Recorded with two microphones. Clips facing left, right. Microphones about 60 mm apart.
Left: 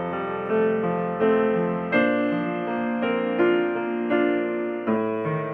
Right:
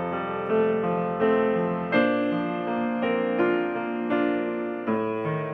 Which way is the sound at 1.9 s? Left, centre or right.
Left.